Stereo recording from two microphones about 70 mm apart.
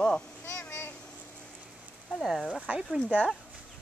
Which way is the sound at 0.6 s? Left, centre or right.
Left.